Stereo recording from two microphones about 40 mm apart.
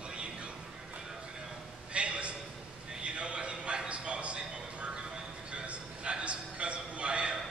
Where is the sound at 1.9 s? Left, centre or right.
Right.